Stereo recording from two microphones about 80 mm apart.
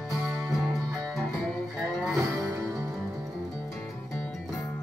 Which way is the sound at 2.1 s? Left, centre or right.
Right.